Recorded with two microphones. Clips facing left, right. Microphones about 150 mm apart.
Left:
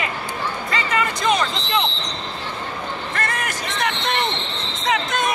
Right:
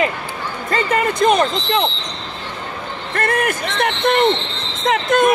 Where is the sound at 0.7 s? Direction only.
50° right (ahead or behind).